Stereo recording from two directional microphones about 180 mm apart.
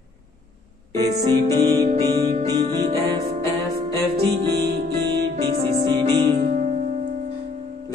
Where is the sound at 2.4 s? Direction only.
40° right (ahead or behind).